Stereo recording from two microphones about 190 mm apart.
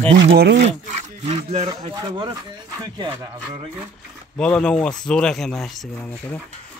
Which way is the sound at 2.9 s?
20° right (ahead or behind).